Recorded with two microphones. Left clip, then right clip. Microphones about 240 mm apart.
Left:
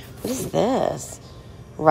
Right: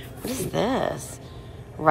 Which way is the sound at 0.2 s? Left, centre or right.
Centre.